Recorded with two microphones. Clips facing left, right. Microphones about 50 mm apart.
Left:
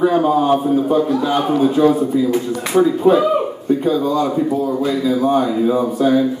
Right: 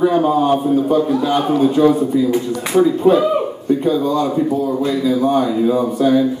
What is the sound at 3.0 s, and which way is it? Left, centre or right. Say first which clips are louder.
A man's voice: even; centre.